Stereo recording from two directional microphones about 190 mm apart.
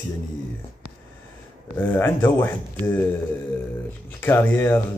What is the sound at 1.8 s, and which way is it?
Speech, 10° left (ahead or behind).